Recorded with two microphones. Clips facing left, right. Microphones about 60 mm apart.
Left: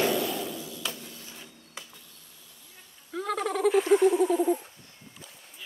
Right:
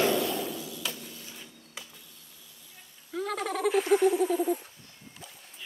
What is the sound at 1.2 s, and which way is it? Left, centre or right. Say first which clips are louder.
Printer: even; centre.